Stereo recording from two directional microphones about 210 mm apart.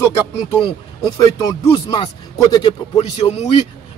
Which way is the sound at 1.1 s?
15° left (ahead or behind).